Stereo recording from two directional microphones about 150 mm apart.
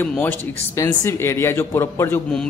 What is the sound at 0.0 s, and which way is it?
A man's voice, 10° left (ahead or behind).